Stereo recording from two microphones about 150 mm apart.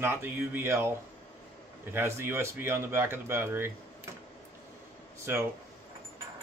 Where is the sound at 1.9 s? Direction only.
15° right (ahead or behind).